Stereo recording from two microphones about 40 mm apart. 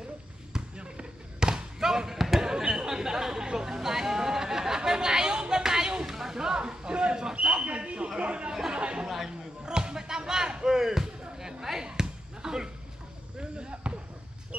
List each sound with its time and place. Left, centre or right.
0.5 s basketball bounce: right
1.5 s basketball bounce: centre
2.5 s chatter: centre
7.6 s a sound: right
8.2 s chatter: right
9.7 s basketball bounce: centre
14.5 s a sound: right